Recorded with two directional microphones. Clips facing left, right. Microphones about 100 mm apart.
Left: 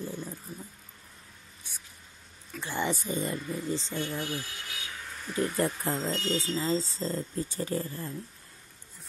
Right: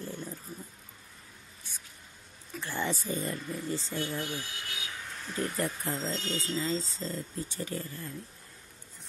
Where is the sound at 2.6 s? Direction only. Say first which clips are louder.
Left 2 dB; 15° left (ahead or behind).